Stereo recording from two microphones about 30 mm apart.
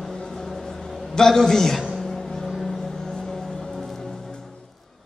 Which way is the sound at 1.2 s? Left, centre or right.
Centre.